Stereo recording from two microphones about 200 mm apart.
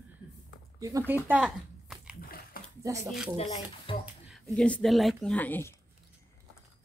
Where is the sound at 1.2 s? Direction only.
5° right (ahead or behind).